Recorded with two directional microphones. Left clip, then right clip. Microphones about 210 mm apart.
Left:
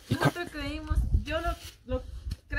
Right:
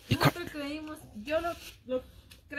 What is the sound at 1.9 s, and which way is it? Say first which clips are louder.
Speech: right 1 dB; 5° left (ahead or behind).